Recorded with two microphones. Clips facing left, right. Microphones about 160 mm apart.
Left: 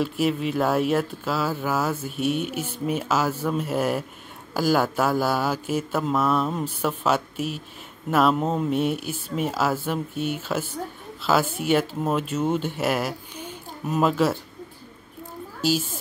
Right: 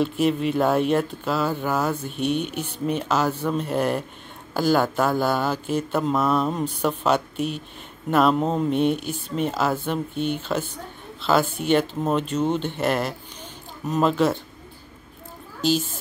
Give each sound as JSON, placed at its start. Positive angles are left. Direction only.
{"t": 0.0, "sound": "speech", "side_deg": 5}
{"t": 15.6, "sound": "speech", "side_deg": 10}